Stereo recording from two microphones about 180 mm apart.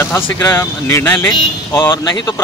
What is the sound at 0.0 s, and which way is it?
Speech, 15° left (ahead or behind).